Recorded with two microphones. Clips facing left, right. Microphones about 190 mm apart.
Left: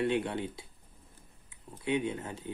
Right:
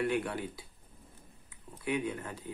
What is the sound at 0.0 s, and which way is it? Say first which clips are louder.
Speech: left 2 dB; 25° left (ahead or behind).